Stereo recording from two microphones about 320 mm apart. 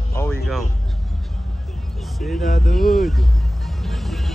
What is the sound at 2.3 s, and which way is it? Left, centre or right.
Speech, left.